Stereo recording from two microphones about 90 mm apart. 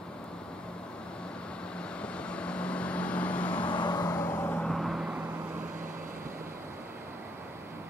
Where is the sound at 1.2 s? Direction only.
10° left (ahead or behind).